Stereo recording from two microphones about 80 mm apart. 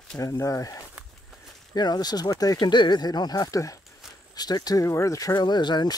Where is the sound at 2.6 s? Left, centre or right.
Left.